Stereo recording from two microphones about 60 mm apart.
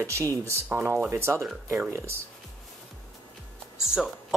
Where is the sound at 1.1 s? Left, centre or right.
Right.